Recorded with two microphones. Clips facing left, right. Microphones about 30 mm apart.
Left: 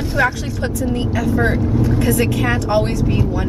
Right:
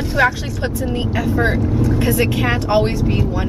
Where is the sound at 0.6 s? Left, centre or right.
Right.